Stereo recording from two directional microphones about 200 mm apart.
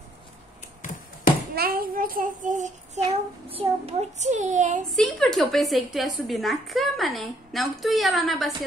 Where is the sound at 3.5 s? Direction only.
30° right (ahead or behind).